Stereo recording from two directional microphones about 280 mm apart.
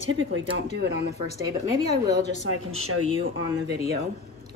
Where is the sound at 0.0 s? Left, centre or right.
Right.